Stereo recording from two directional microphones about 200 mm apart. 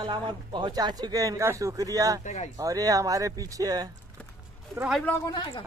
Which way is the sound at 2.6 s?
15° right (ahead or behind).